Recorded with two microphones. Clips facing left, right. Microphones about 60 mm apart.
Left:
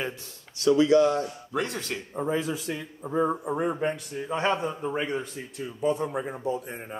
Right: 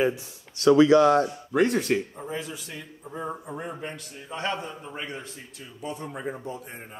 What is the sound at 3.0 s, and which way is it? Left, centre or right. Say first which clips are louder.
A man's voice: left 9 dB; left.